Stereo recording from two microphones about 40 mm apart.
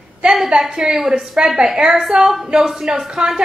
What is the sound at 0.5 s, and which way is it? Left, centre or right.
A woman's voice, right.